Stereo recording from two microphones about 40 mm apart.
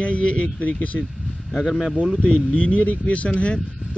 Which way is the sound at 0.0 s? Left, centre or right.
Left.